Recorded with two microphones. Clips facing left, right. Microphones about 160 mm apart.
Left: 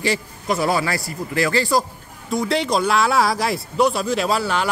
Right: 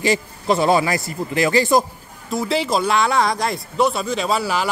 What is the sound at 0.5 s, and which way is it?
Speech, 25° right (ahead or behind).